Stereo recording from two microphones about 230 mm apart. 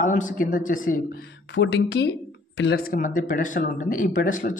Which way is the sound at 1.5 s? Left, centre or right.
Left.